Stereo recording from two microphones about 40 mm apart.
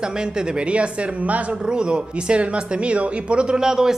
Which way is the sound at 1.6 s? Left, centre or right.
Right.